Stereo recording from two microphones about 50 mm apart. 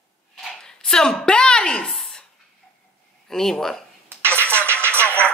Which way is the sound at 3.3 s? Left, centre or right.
Centre.